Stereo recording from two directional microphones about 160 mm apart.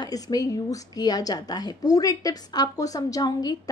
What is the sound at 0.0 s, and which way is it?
A woman's voice, 25° left (ahead or behind).